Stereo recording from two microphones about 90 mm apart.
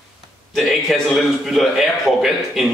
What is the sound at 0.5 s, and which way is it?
A man's voice, centre (ahead or behind).